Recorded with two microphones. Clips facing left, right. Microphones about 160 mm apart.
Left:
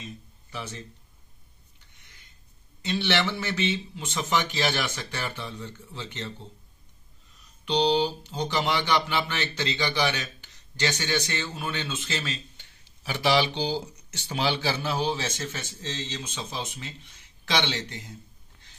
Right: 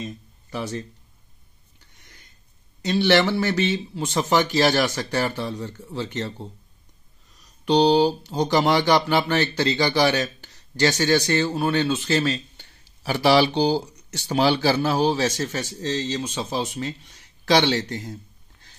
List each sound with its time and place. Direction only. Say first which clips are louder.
0.0 s a sound: right 8 dB; 40° right (ahead or behind)
2.8 s speech: right 8 dB; 40° right (ahead or behind)
7.3 s speech: right 7 dB; 40° right (ahead or behind)